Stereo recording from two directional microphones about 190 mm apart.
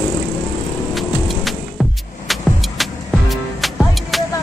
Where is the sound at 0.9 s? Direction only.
Centre (ahead or behind).